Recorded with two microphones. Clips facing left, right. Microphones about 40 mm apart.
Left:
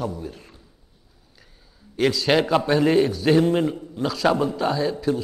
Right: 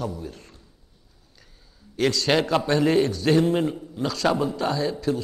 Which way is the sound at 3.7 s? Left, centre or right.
Centre.